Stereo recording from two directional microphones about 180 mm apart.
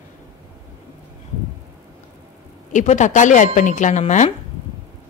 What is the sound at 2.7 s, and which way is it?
A woman's voice, 45° left (ahead or behind).